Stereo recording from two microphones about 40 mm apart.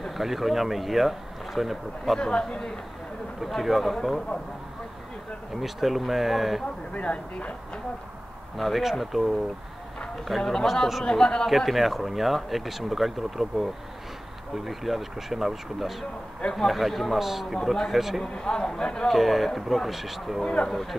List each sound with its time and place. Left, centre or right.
0.0 s speech: centre
2.1 s speech: left
3.3 s speech: centre
5.6 s speech: centre
6.9 s speech: left
8.5 s speech: centre
11.1 s speech: left
11.4 s speech: centre
18.2 s speech: left
19.0 s speech: centre
20.6 s speech: centre